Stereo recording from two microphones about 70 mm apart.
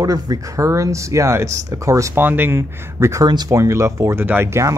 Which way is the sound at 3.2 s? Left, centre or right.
Right.